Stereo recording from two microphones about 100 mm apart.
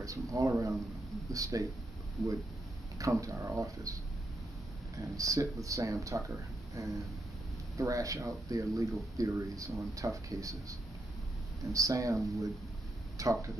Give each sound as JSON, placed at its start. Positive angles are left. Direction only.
{"t": 0.0, "sound": "speech", "side_deg": -35}
{"t": 3.0, "sound": "speech", "side_deg": -30}
{"t": 4.9, "sound": "speech", "side_deg": -35}